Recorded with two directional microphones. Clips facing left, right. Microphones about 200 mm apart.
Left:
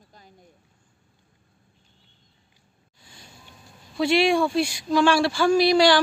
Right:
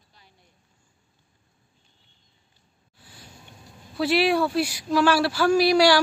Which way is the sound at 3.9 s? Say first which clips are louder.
Left 1 dB; 5° right (ahead or behind).